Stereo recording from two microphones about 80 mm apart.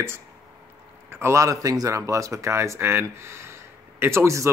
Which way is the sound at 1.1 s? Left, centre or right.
Right.